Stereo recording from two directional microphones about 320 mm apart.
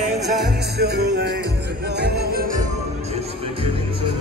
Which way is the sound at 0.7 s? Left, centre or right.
Right.